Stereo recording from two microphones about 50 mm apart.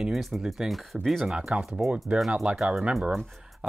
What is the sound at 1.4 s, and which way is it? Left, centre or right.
Speech, centre.